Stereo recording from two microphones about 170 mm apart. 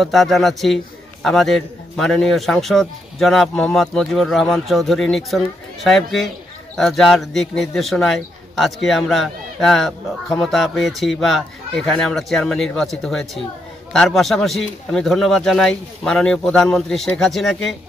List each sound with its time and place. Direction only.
0.0 s a man's voice: centre (ahead or behind)